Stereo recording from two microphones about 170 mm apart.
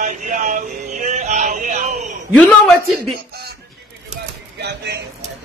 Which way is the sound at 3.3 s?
70° right (ahead or behind).